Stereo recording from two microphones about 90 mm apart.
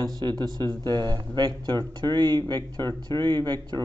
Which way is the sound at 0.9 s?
55° right (ahead or behind).